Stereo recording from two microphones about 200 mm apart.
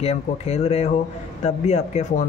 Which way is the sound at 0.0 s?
30° left (ahead or behind).